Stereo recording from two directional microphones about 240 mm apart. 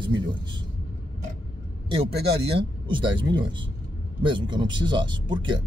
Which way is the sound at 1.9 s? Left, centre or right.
Right.